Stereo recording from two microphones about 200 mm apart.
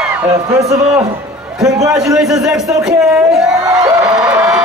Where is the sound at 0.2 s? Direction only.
15° right (ahead or behind).